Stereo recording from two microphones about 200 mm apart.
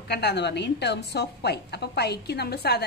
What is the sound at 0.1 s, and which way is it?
A woman's voice, 55° left (ahead or behind).